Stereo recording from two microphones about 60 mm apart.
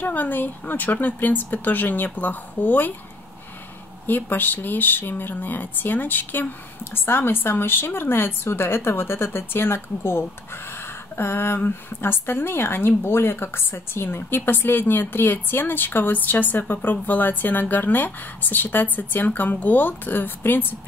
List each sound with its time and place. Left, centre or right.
0.0 s a woman's voice: left
4.0 s a woman's voice: left